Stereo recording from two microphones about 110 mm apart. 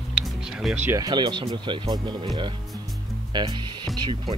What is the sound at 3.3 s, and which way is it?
Speech, 40° right (ahead or behind).